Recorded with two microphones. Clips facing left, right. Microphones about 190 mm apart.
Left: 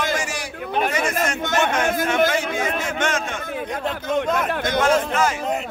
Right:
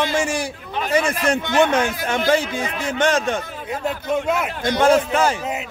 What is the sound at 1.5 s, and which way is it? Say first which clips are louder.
Speech: right 3 dB; 50° left (ahead or behind).